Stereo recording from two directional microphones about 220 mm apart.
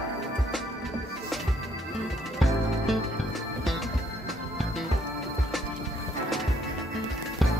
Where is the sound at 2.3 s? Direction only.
Centre (ahead or behind).